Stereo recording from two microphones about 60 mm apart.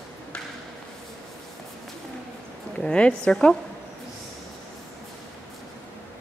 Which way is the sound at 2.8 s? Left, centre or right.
Centre.